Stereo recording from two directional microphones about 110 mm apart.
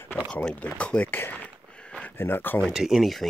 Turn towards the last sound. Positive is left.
turn(degrees=0)  # may be behind; listen again after turning